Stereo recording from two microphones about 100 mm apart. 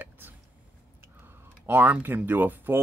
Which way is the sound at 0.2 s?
20° right (ahead or behind).